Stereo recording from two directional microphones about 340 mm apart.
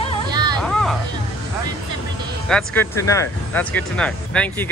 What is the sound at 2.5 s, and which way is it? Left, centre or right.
Speech, centre.